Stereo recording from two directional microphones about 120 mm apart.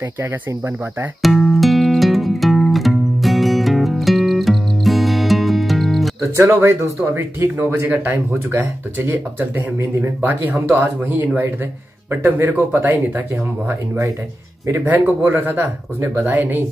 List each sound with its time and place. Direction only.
0.2 s speech: 20° right (ahead or behind)
1.2 s music: centre (ahead or behind)
6.3 s speech: 25° right (ahead or behind)